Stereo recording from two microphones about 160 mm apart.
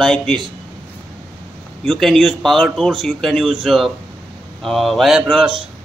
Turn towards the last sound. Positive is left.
turn(degrees=0)  # may be behind; listen again after turning